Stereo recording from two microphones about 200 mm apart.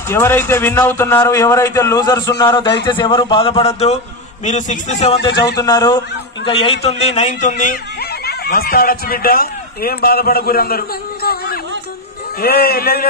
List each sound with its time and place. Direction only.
0.1 s a man's voice: 10° left (ahead or behind); by 5.3 s 30° left (ahead or behind)
5.6 s a man's voice: 20° left (ahead or behind); by 7.6 s 40° left (ahead or behind)
8.3 s a man's voice: 50° left (ahead or behind)